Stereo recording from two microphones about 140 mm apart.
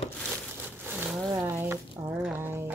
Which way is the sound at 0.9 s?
10° right (ahead or behind).